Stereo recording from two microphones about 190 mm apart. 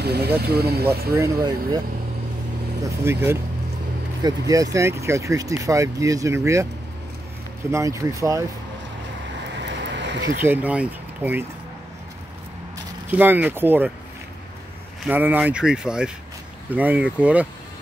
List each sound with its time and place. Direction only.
0.0 s speech: 55° right (ahead or behind)
1.1 s speech: 15° right (ahead or behind)
4.2 s speech: 20° right (ahead or behind)
7.7 s speech: 15° right (ahead or behind)
9.6 s vehicle: 65° right (ahead or behind)
10.4 s speech: 10° right (ahead or behind)
13.1 s speech: 10° right (ahead or behind)
15.0 s speech: 10° right (ahead or behind)